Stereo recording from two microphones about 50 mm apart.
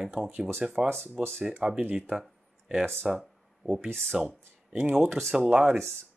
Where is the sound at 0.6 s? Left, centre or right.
Centre.